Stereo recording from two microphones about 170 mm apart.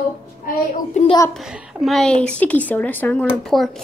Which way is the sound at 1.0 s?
45° left (ahead or behind).